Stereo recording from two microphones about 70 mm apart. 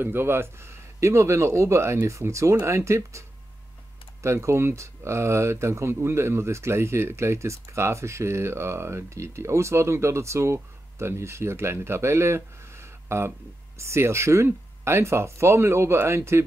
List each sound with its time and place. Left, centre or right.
0.0 s speech: right